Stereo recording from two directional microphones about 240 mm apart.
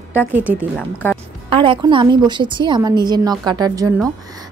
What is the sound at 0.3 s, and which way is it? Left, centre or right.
Speech, centre.